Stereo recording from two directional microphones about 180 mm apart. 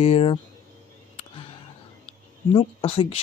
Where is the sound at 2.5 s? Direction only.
30° left (ahead or behind).